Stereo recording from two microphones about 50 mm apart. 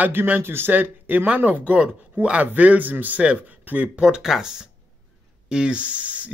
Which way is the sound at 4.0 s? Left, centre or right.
Centre.